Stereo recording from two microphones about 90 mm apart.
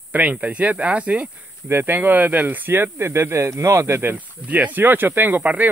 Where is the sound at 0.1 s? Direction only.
15° right (ahead or behind).